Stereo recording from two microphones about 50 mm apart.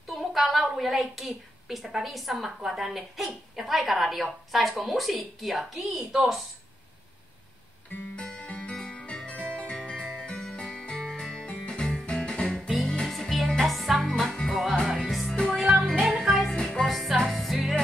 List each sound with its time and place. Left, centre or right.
0.0 s a woman's voice: centre
8.2 s music: left; by 13.9 s centre
14.0 s music: centre
14.6 s music: centre
15.3 s music: centre
15.6 s music: centre
16.5 s music: centre
16.8 s music: centre